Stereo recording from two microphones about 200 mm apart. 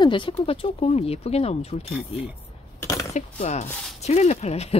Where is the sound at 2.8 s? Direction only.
15° left (ahead or behind).